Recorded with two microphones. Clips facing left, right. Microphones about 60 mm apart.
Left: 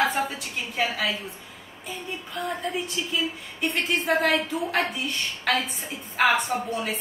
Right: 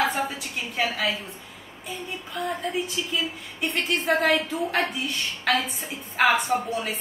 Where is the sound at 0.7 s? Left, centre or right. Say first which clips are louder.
Even; centre.